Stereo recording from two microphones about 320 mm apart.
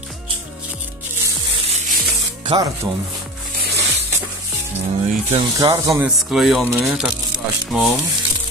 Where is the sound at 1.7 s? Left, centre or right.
Centre.